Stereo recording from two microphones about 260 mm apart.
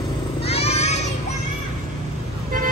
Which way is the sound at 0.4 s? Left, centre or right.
Left.